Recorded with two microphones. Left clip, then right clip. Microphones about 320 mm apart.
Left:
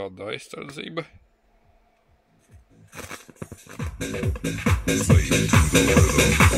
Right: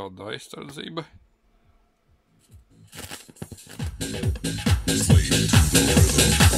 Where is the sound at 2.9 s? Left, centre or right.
Centre.